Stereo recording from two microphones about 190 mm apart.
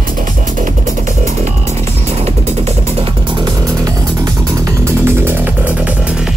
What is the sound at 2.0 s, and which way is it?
Music, 35° right (ahead or behind).